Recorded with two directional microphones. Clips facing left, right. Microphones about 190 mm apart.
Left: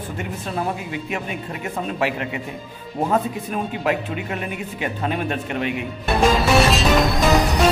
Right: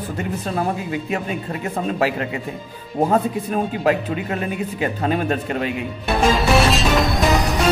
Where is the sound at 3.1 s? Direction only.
35° right (ahead or behind).